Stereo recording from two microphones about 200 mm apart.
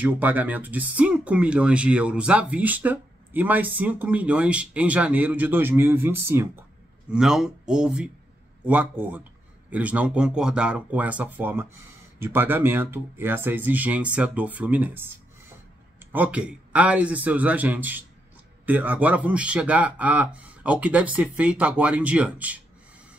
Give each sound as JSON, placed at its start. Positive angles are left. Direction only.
{"t": 0.0, "sound": "speech", "side_deg": -10}